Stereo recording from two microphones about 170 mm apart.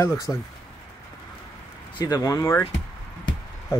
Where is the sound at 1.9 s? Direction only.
20° left (ahead or behind).